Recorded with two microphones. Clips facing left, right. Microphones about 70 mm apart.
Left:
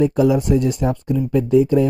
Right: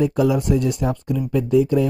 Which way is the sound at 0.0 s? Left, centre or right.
Left.